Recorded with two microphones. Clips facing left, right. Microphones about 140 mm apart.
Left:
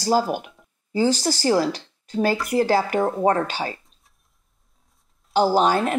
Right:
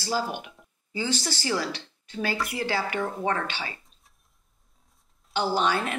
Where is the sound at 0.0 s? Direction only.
45° left (ahead or behind).